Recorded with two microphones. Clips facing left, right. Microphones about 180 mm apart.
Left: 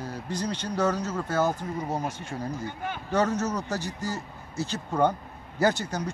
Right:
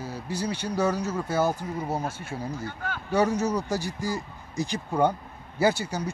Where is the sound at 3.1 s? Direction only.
10° right (ahead or behind).